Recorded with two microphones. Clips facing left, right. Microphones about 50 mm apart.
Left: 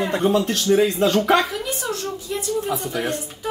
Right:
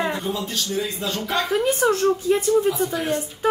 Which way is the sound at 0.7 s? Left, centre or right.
Left.